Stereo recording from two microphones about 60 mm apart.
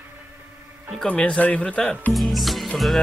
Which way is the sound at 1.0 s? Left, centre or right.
Centre.